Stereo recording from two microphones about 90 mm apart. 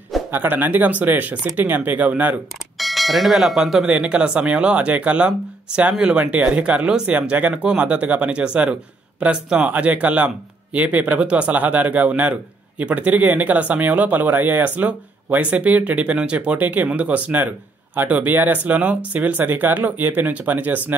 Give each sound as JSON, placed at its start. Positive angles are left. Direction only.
{"t": 0.3, "sound": "speech", "side_deg": -20}
{"t": 2.8, "sound": "speech", "side_deg": 0}